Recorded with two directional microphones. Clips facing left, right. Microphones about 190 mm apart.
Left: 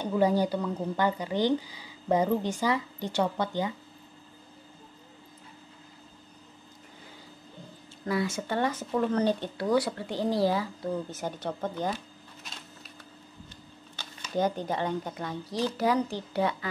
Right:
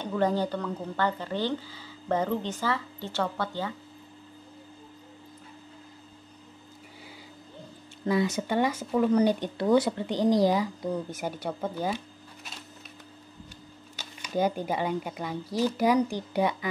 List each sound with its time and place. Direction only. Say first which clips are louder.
0.0 s a woman's voice: left 2 dB; 10° left (ahead or behind)
8.1 s speech: right 3 dB; 20° right (ahead or behind)
14.2 s speech: right 1 dB; 10° right (ahead or behind)